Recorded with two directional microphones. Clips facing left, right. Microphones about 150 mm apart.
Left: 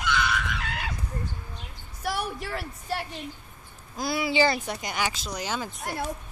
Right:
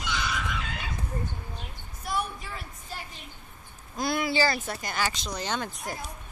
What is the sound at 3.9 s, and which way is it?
Speech, 5° left (ahead or behind).